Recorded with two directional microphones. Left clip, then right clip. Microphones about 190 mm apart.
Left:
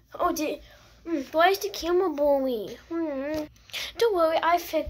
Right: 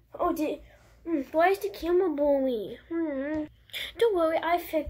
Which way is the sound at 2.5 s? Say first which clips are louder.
Left 1 dB; 10° left (ahead or behind).